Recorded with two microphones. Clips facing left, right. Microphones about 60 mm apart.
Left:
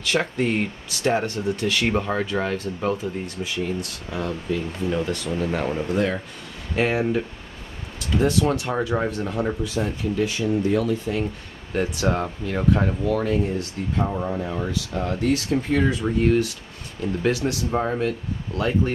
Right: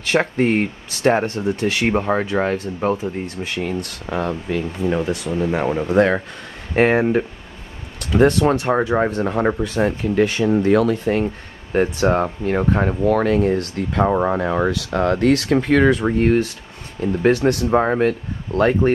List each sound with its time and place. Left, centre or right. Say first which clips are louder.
0.0 s speech: right 5 dB; right
3.4 s speech: right 2 dB; right
4.0 s speech: right 5 dB; right
5.1 s speech: right 4 dB; centre
5.9 s speech: right 8 dB; right
8.2 s speech: right 6 dB; right
8.5 s speech: right 6 dB; right
11.7 s speech: right 6 dB; right